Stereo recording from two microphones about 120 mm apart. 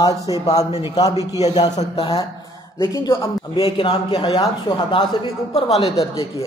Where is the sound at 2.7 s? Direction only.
25° left (ahead or behind).